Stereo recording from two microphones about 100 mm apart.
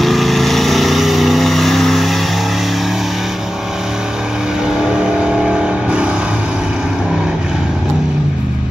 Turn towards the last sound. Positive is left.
turn(degrees=-5)  # may be behind; listen again after turning